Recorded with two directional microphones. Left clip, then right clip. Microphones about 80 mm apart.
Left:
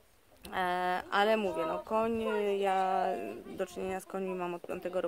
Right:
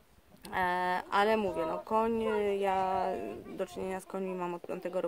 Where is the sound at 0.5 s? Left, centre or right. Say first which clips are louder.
Right 1 dB; right.